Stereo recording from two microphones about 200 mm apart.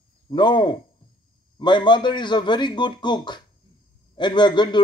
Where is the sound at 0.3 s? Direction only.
20° left (ahead or behind).